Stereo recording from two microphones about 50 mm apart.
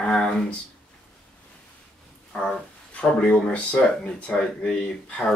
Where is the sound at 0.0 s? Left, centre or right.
Centre.